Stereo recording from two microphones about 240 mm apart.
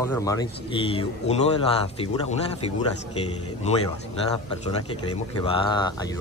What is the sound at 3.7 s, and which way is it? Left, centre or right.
Speech, left.